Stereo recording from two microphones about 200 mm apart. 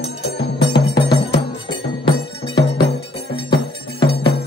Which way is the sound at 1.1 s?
25° left (ahead or behind).